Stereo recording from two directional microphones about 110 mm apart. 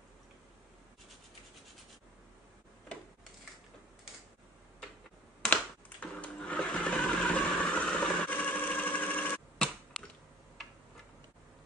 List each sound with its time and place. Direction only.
5.4 s sewing machine: 10° left (ahead or behind)